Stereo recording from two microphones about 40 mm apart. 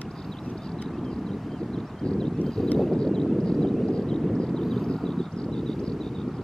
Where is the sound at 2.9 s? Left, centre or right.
Centre.